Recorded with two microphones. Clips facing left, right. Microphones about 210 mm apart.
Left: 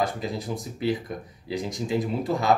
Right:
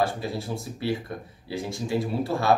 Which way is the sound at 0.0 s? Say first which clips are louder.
Right 1 dB; 15° left (ahead or behind).